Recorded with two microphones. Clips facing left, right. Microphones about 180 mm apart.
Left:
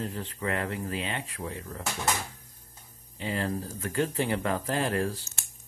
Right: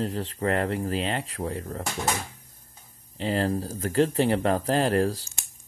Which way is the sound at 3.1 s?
35° right (ahead or behind).